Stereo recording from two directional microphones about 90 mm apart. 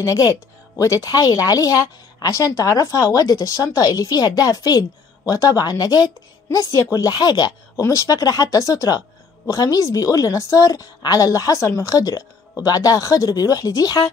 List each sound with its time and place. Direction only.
0.0 s speech: 40° left (ahead or behind)
7.8 s a woman's voice: 40° left (ahead or behind)